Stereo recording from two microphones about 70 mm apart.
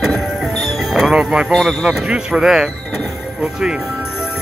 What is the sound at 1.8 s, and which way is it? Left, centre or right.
Speech, centre.